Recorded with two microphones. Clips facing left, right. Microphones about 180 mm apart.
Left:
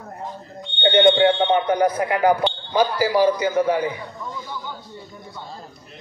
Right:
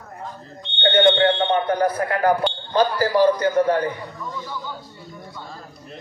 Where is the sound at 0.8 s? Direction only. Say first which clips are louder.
Left 1 dB; 15° left (ahead or behind).